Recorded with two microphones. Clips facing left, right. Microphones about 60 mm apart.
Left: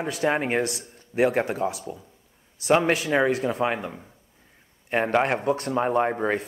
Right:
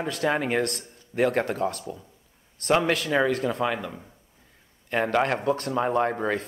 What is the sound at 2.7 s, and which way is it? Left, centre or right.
Speech, left.